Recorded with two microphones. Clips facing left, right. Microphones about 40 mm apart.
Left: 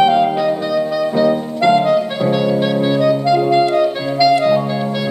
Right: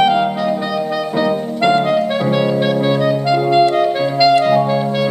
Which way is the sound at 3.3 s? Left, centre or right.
Right.